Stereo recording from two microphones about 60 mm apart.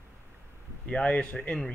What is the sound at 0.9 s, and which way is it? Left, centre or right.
Speech, centre.